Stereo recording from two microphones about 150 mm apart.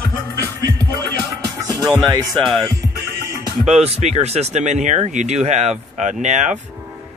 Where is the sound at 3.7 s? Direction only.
45° right (ahead or behind).